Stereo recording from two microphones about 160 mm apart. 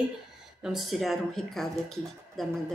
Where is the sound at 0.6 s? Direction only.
Centre (ahead or behind).